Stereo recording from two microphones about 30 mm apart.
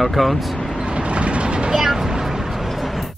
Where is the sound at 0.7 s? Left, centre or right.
Right.